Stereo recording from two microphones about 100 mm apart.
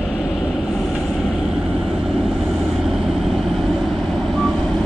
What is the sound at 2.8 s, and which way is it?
Vehicle, centre (ahead or behind).